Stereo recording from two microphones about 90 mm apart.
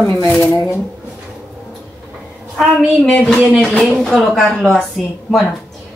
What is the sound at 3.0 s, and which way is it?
Speech, 10° left (ahead or behind).